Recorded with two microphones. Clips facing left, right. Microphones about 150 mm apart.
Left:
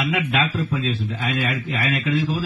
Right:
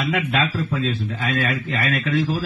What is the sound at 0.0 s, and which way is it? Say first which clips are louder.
A man's voice: even; 10° left (ahead or behind).